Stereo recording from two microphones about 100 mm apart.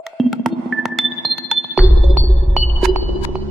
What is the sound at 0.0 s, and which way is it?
Music, centre (ahead or behind).